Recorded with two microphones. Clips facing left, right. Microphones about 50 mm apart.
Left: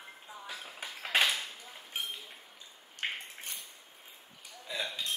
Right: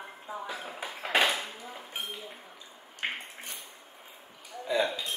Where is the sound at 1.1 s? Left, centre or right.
Right.